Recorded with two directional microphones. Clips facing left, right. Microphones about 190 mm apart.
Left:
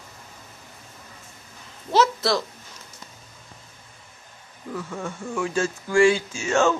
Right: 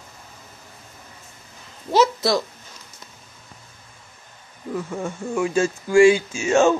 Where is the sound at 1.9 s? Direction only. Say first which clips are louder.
Right 2 dB; 15° right (ahead or behind).